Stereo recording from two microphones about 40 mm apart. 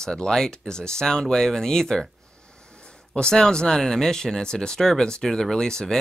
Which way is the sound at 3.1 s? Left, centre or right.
Left.